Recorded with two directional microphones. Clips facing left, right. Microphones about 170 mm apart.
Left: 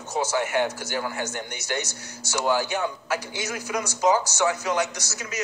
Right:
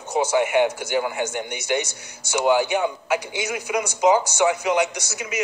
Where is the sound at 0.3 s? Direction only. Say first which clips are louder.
Right 6 dB; 10° right (ahead or behind).